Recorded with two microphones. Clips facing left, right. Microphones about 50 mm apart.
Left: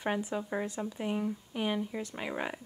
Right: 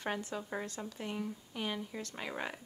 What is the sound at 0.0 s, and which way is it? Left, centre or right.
Speech, centre.